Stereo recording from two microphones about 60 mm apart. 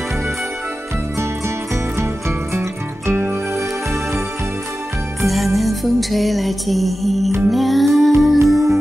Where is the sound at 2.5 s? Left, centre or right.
Right.